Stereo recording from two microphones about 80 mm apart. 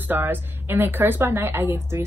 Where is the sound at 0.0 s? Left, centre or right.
Right.